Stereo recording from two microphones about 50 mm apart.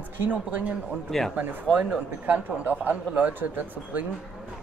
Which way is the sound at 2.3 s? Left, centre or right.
Right.